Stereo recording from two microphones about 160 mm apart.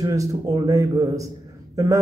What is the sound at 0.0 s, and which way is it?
A man's voice, 20° right (ahead or behind).